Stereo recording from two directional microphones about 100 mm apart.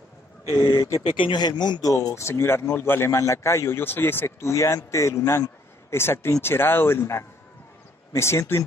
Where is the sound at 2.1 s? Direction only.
25° left (ahead or behind).